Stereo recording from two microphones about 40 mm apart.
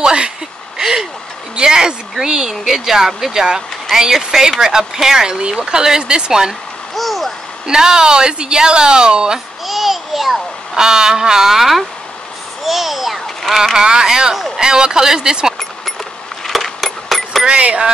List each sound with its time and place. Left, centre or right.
0.0 s a sound: right
1.6 s a woman's voice: centre
7.0 s a sound: centre
7.6 s a woman's voice: centre
9.7 s babbling: centre
10.8 s a child's voice: centre
13.7 s speech: centre
16.4 s coin: centre
17.5 s a woman's voice: right